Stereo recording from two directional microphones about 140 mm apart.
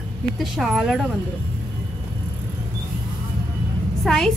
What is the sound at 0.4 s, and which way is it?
Speech, centre (ahead or behind).